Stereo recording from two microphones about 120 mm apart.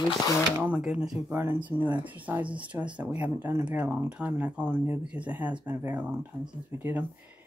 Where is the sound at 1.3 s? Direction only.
20° right (ahead or behind).